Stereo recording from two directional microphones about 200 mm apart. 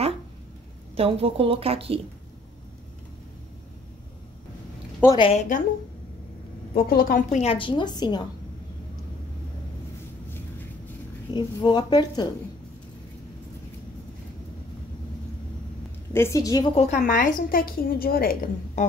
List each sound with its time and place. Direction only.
0.9 s a woman's voice: 30° right (ahead or behind)
5.0 s a woman's voice: 25° left (ahead or behind)
6.7 s a woman's voice: 50° left (ahead or behind); by 8.2 s 20° left (ahead or behind)
11.3 s a woman's voice: 20° left (ahead or behind)
16.1 s a woman's voice: 15° left (ahead or behind)
16.8 s a woman's voice: 40° left (ahead or behind)